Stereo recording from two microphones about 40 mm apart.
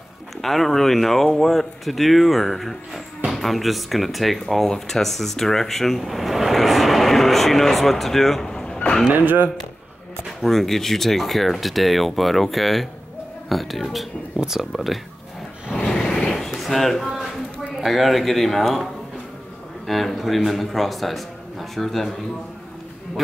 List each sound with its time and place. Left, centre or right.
0.4 s speech: centre
9.1 s speech: right
10.4 s speech: centre
15.7 s vehicle: left
16.2 s a sound: centre
17.7 s speech: centre
19.9 s speech: centre